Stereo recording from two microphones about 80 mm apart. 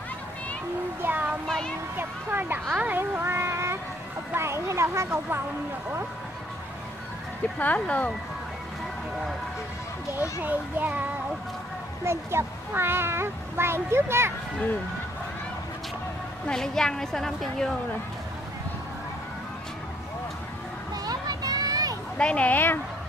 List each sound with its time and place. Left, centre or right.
1.0 s a sound: right
2.0 s speech: right
7.5 s speech: centre
10.4 s speech: right
12.0 s speech: right
16.4 s a woman's voice: centre
20.9 s a sound: right
22.1 s a woman's voice: centre